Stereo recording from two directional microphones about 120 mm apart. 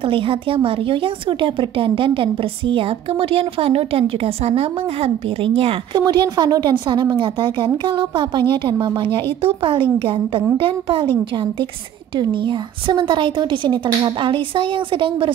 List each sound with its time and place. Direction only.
0.1 s a woman's voice: 50° right (ahead or behind)
5.9 s a woman's voice: 35° right (ahead or behind)
12.2 s a woman's voice: 40° right (ahead or behind)